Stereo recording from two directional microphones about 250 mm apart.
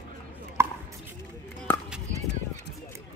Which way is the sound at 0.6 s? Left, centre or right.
Centre.